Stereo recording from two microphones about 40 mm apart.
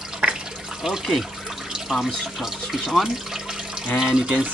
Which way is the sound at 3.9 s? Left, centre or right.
Centre.